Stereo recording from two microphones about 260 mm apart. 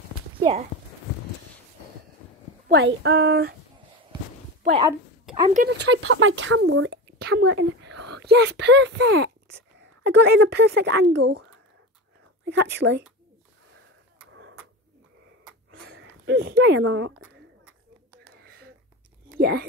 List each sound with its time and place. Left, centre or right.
0.4 s speech: right
2.7 s speech: right
5.5 s speech: right
12.4 s speech: right
15.7 s a sound: right
18.3 s a sound: right
19.3 s speech: right